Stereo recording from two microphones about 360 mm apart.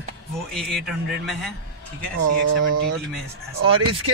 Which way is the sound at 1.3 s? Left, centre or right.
Centre.